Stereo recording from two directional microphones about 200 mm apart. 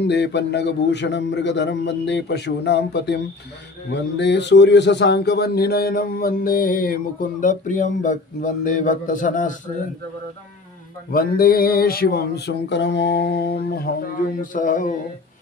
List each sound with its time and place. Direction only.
0.0 s a man's voice: 60° left (ahead or behind); by 9.6 s 40° left (ahead or behind)
11.1 s a man's voice: 45° left (ahead or behind)